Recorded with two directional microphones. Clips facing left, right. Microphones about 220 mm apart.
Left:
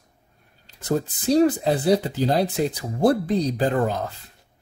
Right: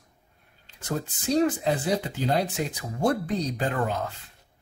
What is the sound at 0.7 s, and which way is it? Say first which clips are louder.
Speech: left 7 dB; 35° left (ahead or behind).